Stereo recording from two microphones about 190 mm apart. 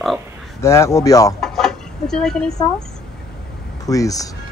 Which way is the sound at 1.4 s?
5° left (ahead or behind).